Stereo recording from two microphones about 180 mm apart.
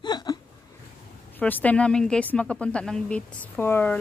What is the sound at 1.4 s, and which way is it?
A woman's voice, 10° left (ahead or behind).